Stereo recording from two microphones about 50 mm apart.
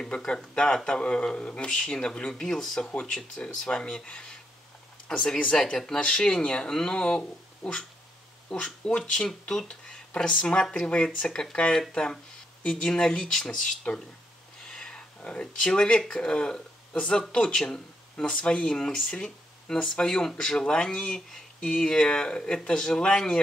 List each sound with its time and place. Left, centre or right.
0.0 s speech: centre
14.7 s a sound: centre
16.1 s speech: centre